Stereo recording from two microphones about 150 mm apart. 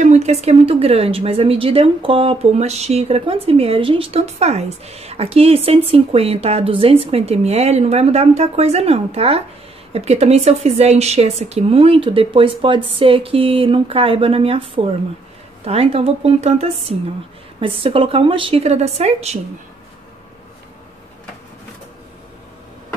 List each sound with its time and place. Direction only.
0.0 s a woman's voice: 45° right (ahead or behind)